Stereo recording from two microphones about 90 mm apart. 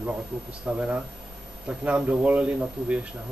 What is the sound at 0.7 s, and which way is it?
Speech, 10° right (ahead or behind).